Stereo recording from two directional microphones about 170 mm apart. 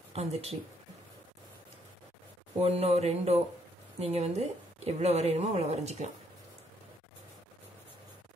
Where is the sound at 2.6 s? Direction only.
40° right (ahead or behind).